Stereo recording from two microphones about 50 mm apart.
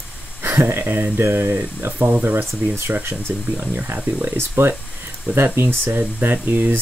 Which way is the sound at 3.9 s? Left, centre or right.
Right.